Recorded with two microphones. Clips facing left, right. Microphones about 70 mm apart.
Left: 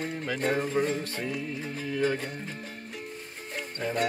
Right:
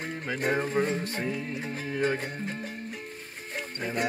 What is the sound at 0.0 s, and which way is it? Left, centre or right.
Music, centre.